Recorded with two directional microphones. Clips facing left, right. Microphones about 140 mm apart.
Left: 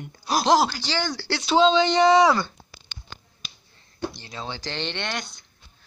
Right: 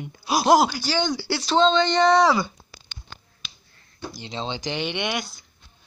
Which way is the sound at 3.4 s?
40° left (ahead or behind).